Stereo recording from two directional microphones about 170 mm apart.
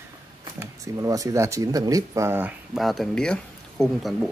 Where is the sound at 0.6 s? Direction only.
20° right (ahead or behind).